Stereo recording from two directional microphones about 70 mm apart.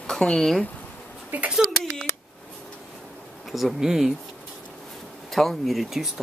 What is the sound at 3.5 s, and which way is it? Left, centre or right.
Speech, centre.